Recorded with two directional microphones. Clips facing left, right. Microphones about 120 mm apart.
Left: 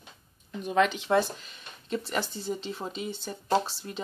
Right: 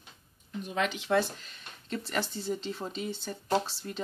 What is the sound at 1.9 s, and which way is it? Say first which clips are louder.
Speech: left 2 dB; 10° left (ahead or behind).